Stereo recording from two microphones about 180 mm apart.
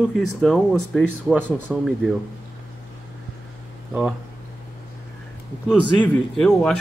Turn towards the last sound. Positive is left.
turn(degrees=5)  # may be behind; listen again after turning